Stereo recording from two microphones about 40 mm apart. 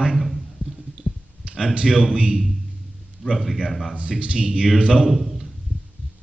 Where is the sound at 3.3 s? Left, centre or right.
Centre.